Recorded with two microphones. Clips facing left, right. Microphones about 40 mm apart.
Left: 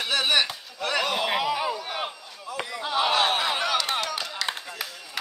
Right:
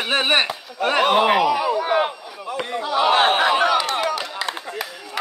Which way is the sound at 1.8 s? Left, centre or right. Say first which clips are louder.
Right 12 dB; right.